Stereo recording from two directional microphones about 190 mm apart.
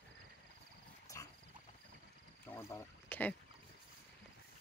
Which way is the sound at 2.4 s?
10° left (ahead or behind).